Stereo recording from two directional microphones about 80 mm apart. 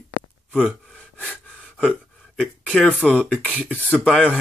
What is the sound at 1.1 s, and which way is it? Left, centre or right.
Gasp, centre.